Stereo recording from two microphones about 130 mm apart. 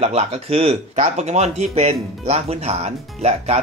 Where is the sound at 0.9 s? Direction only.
65° right (ahead or behind).